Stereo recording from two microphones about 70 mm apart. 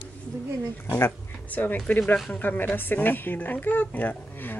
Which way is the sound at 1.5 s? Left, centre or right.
Left.